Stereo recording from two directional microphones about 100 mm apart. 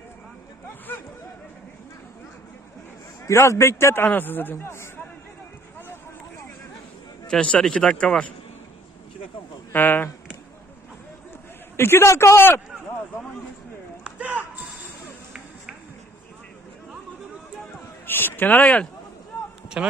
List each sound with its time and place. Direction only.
3.3 s a man's voice: 30° left (ahead or behind)
7.2 s speech: 10° left (ahead or behind)
9.7 s speech: 20° left (ahead or behind)
11.7 s a man's voice: 25° left (ahead or behind)
14.0 s a sound: 15° right (ahead or behind)
18.0 s speech: 20° left (ahead or behind)
19.8 s a man's voice: 10° right (ahead or behind)